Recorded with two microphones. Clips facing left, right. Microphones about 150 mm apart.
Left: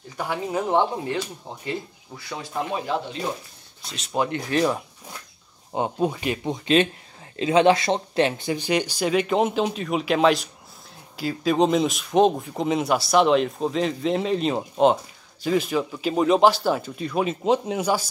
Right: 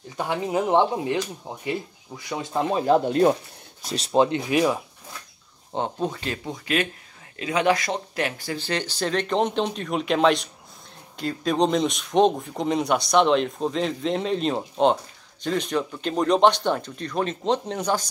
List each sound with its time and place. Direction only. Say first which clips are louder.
0.2 s speech: right 2 dB; 20° right (ahead or behind)
2.9 s speech: right 9 dB; 55° right (ahead or behind)
3.8 s speech: right 5 dB; 35° right (ahead or behind)
4.5 s speech: right 1 dB; 5° right (ahead or behind)
5.7 s speech: left 3 dB; 10° left (ahead or behind)